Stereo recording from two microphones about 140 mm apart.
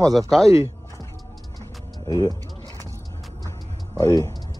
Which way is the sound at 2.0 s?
25° left (ahead or behind).